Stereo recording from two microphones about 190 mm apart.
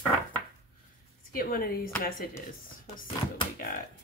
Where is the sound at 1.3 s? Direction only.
50° left (ahead or behind).